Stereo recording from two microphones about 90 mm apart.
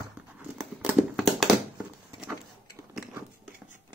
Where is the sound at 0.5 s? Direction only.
20° right (ahead or behind).